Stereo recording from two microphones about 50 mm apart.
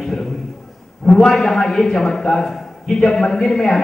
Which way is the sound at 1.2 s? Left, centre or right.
Centre.